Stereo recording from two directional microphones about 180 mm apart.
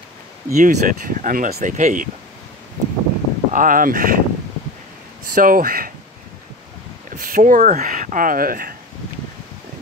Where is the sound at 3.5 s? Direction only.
50° right (ahead or behind).